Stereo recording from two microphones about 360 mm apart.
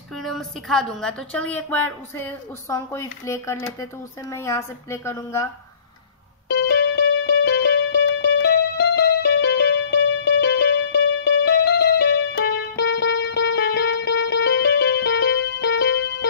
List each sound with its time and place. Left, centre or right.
0.2 s a woman's voice: centre
6.5 s music: left